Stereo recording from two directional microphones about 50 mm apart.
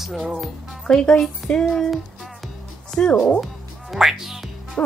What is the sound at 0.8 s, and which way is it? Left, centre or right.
Speech, centre.